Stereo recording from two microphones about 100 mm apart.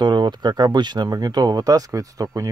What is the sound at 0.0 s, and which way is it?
Speech, 50° right (ahead or behind).